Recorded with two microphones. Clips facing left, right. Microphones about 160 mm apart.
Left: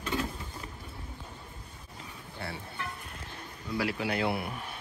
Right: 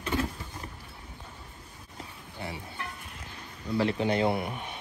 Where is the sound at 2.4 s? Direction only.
20° right (ahead or behind).